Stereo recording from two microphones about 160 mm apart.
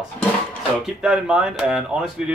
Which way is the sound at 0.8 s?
5° right (ahead or behind).